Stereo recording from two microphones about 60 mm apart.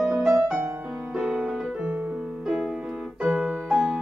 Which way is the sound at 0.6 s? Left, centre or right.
Centre.